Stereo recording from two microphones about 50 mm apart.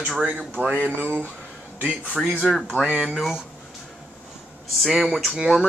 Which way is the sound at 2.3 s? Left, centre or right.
Centre.